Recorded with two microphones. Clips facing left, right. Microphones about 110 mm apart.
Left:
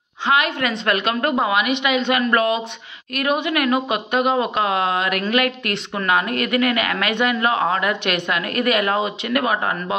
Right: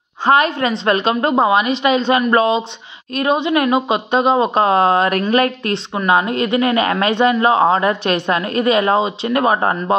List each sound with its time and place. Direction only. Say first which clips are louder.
0.2 s a woman's voice: right 5 dB; 40° right (ahead or behind)